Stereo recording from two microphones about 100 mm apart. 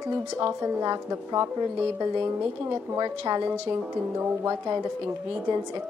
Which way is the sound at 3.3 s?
45° right (ahead or behind).